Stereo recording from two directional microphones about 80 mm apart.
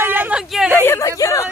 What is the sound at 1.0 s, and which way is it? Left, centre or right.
Speech, left.